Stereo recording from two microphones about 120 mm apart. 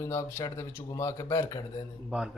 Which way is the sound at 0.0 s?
25° left (ahead or behind).